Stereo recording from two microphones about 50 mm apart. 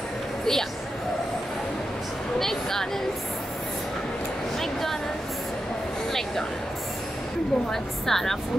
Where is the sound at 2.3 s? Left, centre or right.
Centre.